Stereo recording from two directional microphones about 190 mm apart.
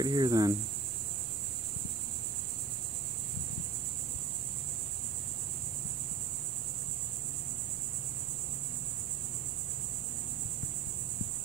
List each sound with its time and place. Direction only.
0.0 s speech: 20° right (ahead or behind)